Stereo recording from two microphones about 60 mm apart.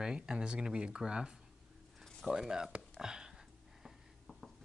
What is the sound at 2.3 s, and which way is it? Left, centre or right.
Speech, centre.